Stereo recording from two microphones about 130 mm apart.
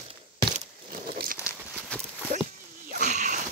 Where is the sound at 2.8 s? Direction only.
80° right.